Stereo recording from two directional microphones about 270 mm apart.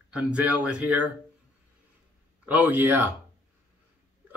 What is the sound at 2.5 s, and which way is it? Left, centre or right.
Speech, centre.